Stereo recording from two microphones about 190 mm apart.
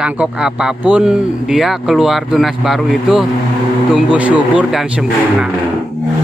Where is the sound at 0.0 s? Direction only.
5° right (ahead or behind).